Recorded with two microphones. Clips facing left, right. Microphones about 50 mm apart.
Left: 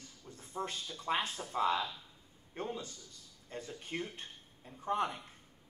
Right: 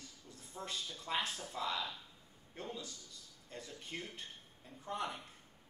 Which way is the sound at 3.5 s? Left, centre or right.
Left.